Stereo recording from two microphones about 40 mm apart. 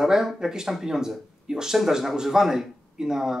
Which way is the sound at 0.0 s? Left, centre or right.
Centre.